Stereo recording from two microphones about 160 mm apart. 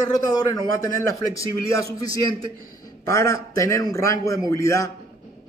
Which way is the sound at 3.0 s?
20° left (ahead or behind).